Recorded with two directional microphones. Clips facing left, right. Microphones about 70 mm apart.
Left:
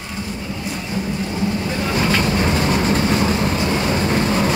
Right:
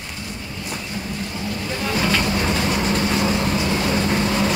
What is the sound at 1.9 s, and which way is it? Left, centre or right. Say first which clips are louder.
Vehicle: left 2 dB; centre.